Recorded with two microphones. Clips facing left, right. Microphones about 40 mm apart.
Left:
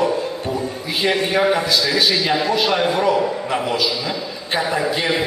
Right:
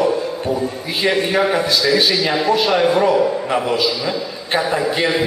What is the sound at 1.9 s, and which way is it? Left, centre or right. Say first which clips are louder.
A man's voice: right 2 dB; right.